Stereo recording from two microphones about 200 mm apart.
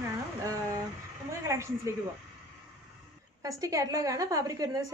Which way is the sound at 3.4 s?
15° right (ahead or behind).